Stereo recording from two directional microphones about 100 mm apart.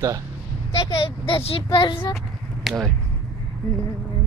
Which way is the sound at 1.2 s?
70° left (ahead or behind).